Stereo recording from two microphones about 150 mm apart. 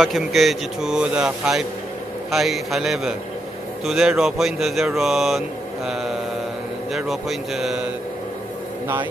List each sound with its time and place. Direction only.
0.0 s a man's voice: centre (ahead or behind)
6.9 s a man's voice: centre (ahead or behind)